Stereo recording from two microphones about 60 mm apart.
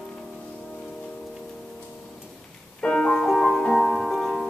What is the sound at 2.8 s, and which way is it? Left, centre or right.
Music, centre.